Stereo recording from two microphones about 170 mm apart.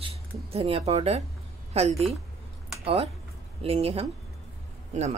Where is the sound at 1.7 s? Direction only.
40° right (ahead or behind).